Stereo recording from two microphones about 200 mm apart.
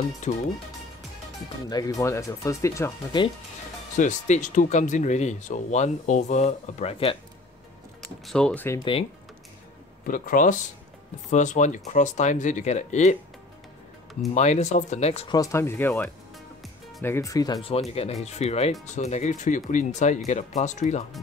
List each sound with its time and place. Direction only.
0.2 s speech: 35° left (ahead or behind)
1.7 s speech: 15° left (ahead or behind)
4.0 s speech: 40° left (ahead or behind)
8.3 s speech: 5° left (ahead or behind)
8.7 s speech: 25° left (ahead or behind)
10.0 s speech: 45° left (ahead or behind)
14.3 s speech: 35° left (ahead or behind)
15.3 s speech: 15° left (ahead or behind); by 21.0 s 35° left (ahead or behind)